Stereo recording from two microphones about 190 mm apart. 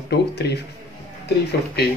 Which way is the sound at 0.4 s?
60° left (ahead or behind).